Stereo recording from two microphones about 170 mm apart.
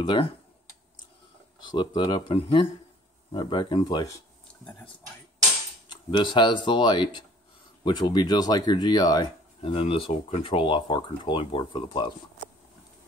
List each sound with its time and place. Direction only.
0.0 s speech: 30° left (ahead or behind)
1.6 s speech: 25° left (ahead or behind)
5.9 s speech: 25° left (ahead or behind)